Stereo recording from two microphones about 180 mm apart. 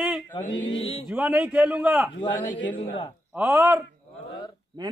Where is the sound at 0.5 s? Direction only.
90° left.